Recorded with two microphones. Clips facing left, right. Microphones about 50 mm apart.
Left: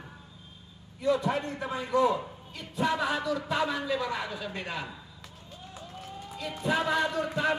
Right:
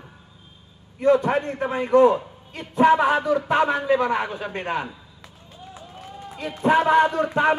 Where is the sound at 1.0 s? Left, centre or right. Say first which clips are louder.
Right 9 dB; right.